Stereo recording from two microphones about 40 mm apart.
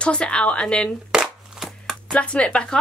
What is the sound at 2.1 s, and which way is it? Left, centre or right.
Speech, left.